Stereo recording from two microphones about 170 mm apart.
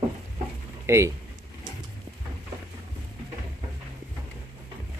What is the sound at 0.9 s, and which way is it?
Speech, 15° right (ahead or behind).